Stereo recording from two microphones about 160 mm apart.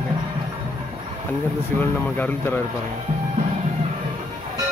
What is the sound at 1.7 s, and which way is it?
Speech, 10° left (ahead or behind).